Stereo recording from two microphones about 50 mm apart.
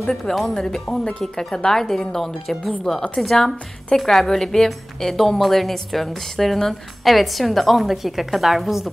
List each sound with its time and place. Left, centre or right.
0.0 s speech: centre